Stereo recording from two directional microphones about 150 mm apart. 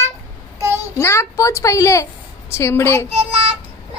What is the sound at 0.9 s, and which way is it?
A woman's voice, 20° left (ahead or behind).